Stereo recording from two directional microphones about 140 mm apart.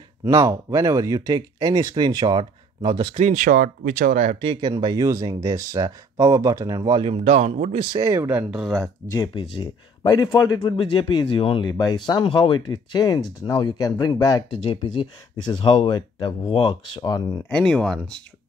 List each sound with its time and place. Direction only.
0.2 s speech: 25° right (ahead or behind)
3.2 s speech: 60° right (ahead or behind)
4.4 s speech: 35° right (ahead or behind)
7.2 s speech: 50° right (ahead or behind)
7.8 s speech: 30° right (ahead or behind)
8.2 s speech: 15° right (ahead or behind)
9.3 s speech: 35° left (ahead or behind)
11.7 s speech: 30° left (ahead or behind)
17.5 s speech: 5° left (ahead or behind)